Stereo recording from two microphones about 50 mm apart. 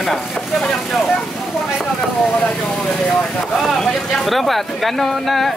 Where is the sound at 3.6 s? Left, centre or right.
Centre.